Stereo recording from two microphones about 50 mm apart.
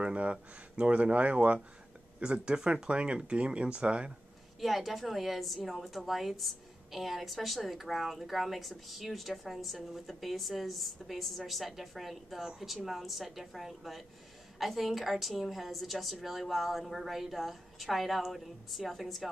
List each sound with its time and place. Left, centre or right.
0.0 s speech: right
4.6 s a woman's voice: centre